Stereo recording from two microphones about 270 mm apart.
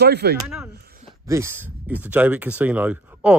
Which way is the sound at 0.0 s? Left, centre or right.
Right.